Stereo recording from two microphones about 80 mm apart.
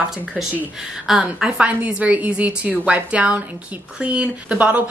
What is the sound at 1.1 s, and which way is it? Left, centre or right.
A woman's voice, centre.